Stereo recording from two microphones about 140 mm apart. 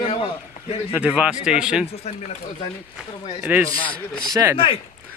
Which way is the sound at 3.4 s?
10° right (ahead or behind).